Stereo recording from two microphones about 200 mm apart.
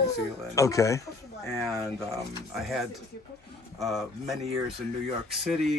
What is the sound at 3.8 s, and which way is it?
Speech, centre (ahead or behind).